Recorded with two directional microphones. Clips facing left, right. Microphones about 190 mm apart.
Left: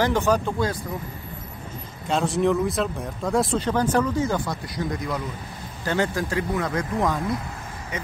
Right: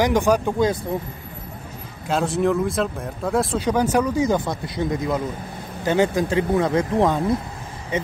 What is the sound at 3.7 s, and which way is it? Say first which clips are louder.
Speech: right 5 dB; 10° right (ahead or behind).